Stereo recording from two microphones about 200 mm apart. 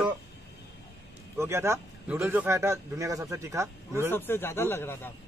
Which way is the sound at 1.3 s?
15° right (ahead or behind).